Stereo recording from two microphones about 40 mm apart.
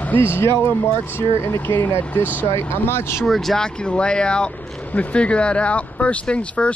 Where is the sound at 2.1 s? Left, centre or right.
Left.